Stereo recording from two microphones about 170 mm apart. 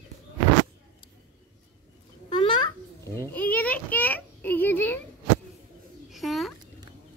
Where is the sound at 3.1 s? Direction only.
10° left (ahead or behind).